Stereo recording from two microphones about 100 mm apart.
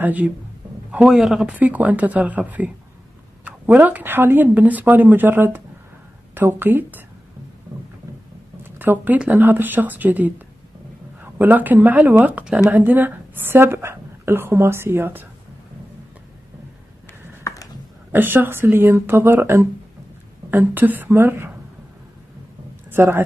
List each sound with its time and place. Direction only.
0.0 s speech: 15° right (ahead or behind)
0.9 s speech: 5° right (ahead or behind); by 7.0 s 20° right (ahead or behind)
8.6 s speech: 20° right (ahead or behind)
11.3 s speech: 15° right (ahead or behind)
17.4 s a sound: 30° left (ahead or behind)
18.1 s speech: 20° right (ahead or behind)
22.8 s speech: 20° right (ahead or behind)